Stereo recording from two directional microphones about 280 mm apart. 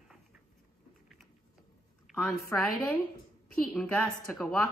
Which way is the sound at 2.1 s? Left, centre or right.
Centre.